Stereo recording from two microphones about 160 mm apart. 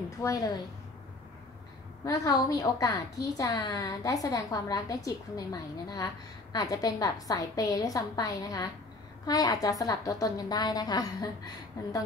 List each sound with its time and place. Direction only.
0.2 s a woman's voice: 20° left (ahead or behind)
2.0 s a woman's voice: 20° left (ahead or behind)